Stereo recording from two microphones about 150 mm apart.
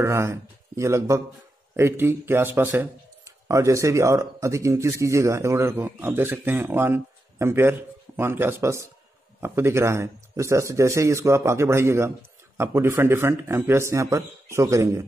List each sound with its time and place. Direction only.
0.0 s speech: 15° right (ahead or behind)